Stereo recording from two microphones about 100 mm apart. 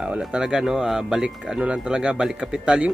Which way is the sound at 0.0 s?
10° right (ahead or behind).